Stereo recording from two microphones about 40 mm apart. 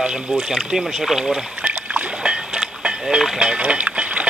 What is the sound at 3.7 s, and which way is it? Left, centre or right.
Music, right.